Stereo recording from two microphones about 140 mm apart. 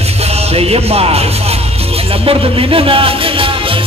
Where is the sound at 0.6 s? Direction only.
45° right (ahead or behind).